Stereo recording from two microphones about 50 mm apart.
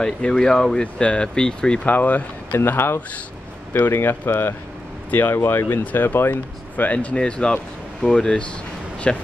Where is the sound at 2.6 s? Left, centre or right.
Left.